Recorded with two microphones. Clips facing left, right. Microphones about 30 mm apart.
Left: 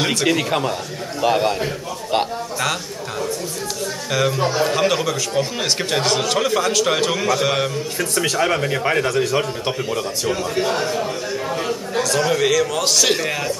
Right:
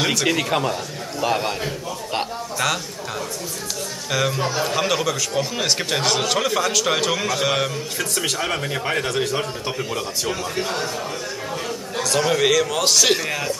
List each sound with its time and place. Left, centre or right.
0.0 s a man's voice: centre
8.4 s a man's voice: centre
12.1 s a man's voice: centre